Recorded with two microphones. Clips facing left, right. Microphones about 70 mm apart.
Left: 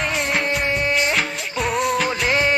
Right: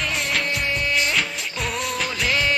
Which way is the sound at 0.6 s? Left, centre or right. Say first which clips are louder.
Left 3 dB; left.